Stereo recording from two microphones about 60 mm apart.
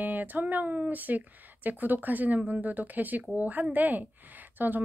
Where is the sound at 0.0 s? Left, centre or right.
Right.